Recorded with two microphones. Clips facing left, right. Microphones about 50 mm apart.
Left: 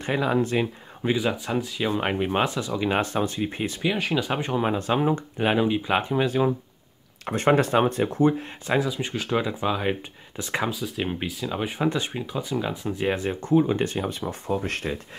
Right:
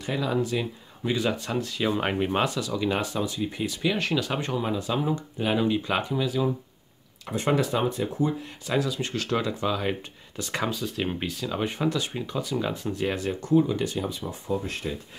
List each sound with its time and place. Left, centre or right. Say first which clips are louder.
0.0 s speech: left 3 dB; left
1.1 s speech: left 1 dB; centre
2.4 s speech: left 1 dB; left
3.0 s speech: left 3 dB; left
3.8 s speech: left 1 dB; centre
4.6 s speech: left 6 dB; left
5.6 s speech: left 2 dB; centre
6.1 s speech: left 4 dB; left
8.6 s speech: left 2 dB; centre
10.7 s speech: left 1 dB; centre
11.8 s speech: left 3 dB; left
12.1 s speech: left 1 dB; centre
13.0 s speech: left 3 dB; left